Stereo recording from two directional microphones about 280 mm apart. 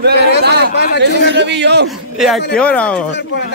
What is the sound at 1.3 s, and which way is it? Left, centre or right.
Speech, right.